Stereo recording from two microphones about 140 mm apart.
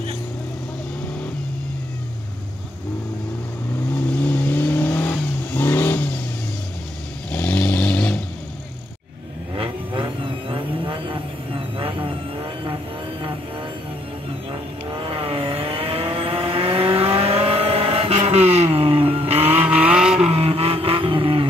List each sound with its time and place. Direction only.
3.9 s vehicle: 10° left (ahead or behind)
7.2 s vehicle: 10° left (ahead or behind)
9.6 s vehicle: 35° right (ahead or behind)
19.6 s vehicle: 10° right (ahead or behind)
20.2 s vehicle: 45° right (ahead or behind)